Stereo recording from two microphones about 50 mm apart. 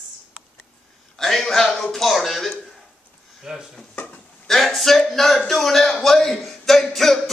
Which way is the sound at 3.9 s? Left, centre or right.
Left.